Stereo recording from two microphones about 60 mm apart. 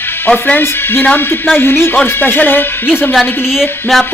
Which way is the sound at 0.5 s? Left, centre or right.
Left.